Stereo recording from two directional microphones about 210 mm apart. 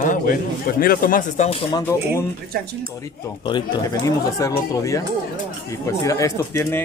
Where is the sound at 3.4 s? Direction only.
20° left (ahead or behind).